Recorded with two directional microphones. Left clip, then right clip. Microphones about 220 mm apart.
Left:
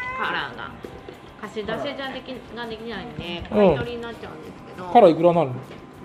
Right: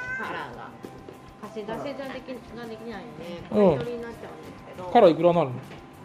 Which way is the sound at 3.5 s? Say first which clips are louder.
Left 3 dB; 15° right (ahead or behind).